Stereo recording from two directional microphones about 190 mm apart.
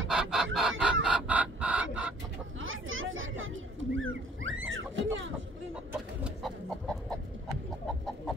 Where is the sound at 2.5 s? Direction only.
90° right.